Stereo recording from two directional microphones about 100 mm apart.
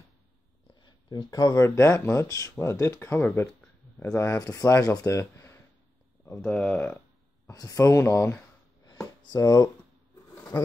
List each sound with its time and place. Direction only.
0.8 s a sound: 45° left (ahead or behind)
1.5 s speech: 30° left (ahead or behind)
5.2 s a sound: 30° left (ahead or behind)
6.4 s speech: 5° left (ahead or behind)
7.4 s speech: 35° left (ahead or behind)
9.2 s speech: 40° left (ahead or behind)